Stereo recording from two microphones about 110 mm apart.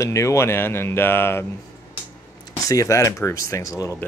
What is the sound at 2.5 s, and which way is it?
Speech, 30° left (ahead or behind).